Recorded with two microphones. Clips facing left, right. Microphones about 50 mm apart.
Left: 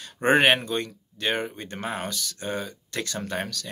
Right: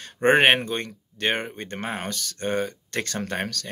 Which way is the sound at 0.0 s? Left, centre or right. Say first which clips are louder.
Right 2 dB; right.